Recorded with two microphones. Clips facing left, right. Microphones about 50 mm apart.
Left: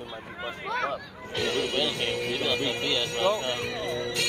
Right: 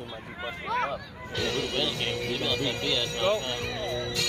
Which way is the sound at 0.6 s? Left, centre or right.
Right.